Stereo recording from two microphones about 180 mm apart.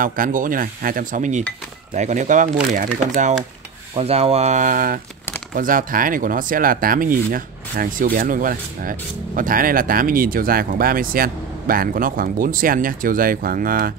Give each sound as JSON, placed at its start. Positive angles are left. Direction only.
{"t": 0.0, "sound": "speech", "side_deg": -50}
{"t": 3.9, "sound": "speech", "side_deg": -35}